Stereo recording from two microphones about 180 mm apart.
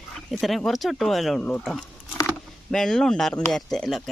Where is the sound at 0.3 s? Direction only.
Centre (ahead or behind).